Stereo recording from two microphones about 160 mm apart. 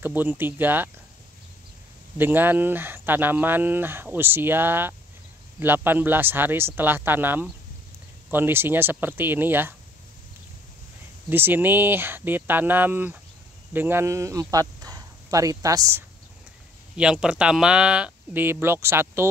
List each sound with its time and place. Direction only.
0.0 s speech: 10° right (ahead or behind)
2.1 s speech: 10° right (ahead or behind)
11.2 s speech: 10° right (ahead or behind)
16.9 s speech: 5° right (ahead or behind)